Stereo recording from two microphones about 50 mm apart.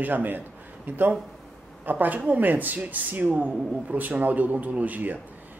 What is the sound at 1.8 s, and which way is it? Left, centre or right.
Speech, right.